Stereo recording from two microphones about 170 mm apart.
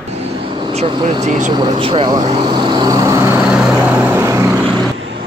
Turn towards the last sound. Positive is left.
turn(degrees=-20)  # may be behind; listen again after turning